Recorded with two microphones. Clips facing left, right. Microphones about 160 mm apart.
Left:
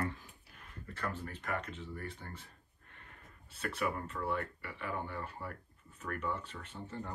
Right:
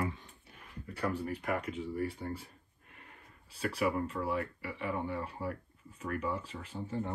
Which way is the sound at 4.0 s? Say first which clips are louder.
Right 5 dB; 35° right (ahead or behind).